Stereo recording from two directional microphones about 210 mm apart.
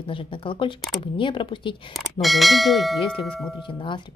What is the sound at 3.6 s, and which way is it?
Speech, 20° left (ahead or behind).